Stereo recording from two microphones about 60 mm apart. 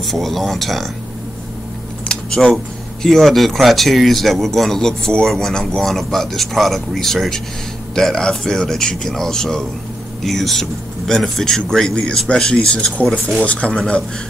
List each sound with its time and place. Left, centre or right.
0.0 s speech: centre
2.0 s a sound: centre
2.5 s speech: centre